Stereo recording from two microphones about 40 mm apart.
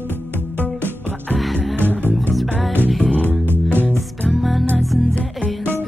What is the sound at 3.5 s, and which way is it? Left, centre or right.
Music, right.